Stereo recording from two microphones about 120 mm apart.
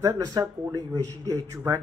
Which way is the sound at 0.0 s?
30° right (ahead or behind).